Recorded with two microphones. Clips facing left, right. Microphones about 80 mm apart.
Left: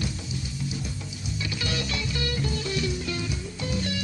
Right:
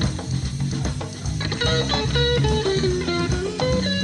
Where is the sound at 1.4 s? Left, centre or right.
Right.